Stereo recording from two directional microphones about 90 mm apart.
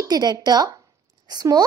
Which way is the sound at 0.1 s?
50° right (ahead or behind).